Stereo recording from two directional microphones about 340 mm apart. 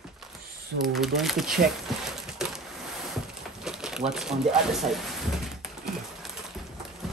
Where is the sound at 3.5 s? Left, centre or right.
Centre.